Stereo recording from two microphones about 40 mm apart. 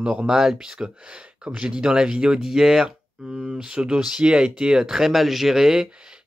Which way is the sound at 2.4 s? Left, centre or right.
Centre.